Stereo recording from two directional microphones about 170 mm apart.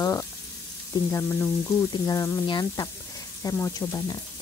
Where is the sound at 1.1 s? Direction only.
15° left (ahead or behind).